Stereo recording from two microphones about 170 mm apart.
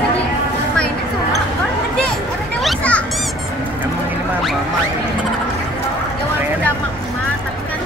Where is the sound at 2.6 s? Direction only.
5° left (ahead or behind).